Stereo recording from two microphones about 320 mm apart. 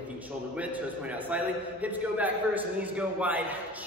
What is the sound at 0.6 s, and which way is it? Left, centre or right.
A man's voice, centre.